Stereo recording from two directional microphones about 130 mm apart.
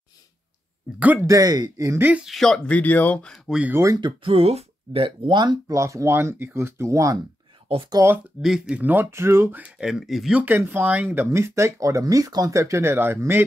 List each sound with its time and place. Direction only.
0.9 s speech: 10° right (ahead or behind)
1.2 s speech: 30° right (ahead or behind)
2.0 s speech: 5° right (ahead or behind); by 3.3 s 10° left (ahead or behind)
3.4 s speech: 5° right (ahead or behind)
3.7 s speech: 25° right (ahead or behind)
4.2 s speech: 50° right (ahead or behind); by 8.2 s 20° right (ahead or behind)
8.4 s speech: 5° right (ahead or behind)